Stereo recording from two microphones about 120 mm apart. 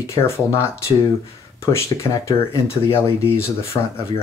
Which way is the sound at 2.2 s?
25° left (ahead or behind).